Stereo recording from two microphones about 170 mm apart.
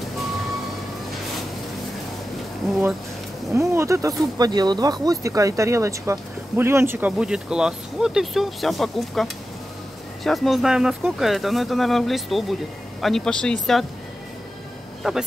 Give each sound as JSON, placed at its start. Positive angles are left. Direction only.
{"t": 3.5, "sound": "speech", "side_deg": -15}
{"t": 15.0, "sound": "speech", "side_deg": -5}